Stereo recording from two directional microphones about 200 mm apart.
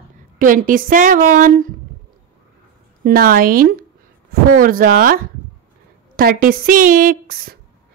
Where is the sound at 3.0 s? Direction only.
50° right (ahead or behind).